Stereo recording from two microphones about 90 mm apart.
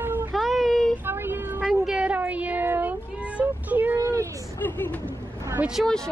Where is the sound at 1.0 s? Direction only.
25° right (ahead or behind).